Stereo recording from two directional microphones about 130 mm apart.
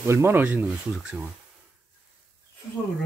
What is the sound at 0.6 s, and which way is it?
Speech, 5° right (ahead or behind).